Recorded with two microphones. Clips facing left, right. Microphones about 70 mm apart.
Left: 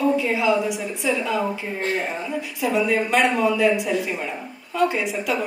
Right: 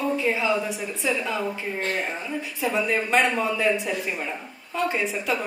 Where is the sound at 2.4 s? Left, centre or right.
Right.